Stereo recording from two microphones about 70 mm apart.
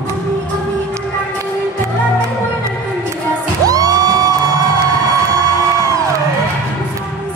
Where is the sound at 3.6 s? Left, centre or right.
Right.